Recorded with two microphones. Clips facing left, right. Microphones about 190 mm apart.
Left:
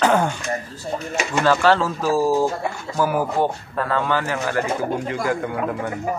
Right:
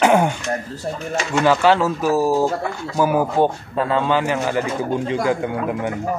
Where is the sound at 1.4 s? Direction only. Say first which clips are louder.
Right 2 dB; 15° right (ahead or behind).